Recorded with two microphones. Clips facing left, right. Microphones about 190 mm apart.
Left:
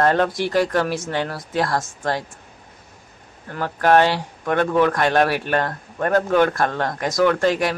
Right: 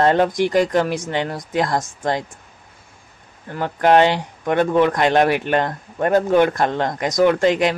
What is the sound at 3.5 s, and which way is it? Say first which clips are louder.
Speech: right 2 dB; 20° right (ahead or behind).